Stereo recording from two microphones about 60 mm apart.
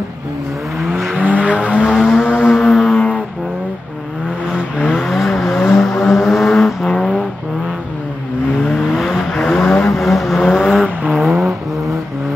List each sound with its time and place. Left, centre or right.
1.1 s vehicle: right
1.8 s vehicle: centre
2.0 s vehicle: centre
2.5 s music: centre
4.5 s vehicle: centre
4.8 s vehicle: centre
8.6 s vehicle: centre